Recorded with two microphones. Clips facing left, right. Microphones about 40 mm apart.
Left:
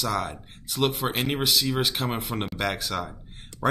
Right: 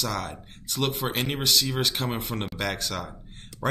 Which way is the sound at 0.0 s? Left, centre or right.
Centre.